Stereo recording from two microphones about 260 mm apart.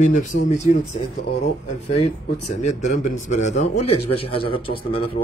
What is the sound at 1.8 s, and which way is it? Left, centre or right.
A man's voice, left.